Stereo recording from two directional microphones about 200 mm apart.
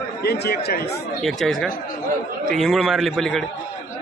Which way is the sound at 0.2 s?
55° left (ahead or behind).